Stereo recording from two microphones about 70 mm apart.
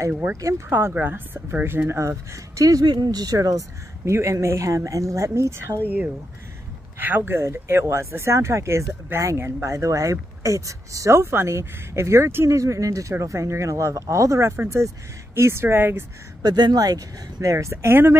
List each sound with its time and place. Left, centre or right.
0.7 s speech: right
2.0 s speech: right
7.0 s speech: right
12.4 s speech: right
16.4 s speech: right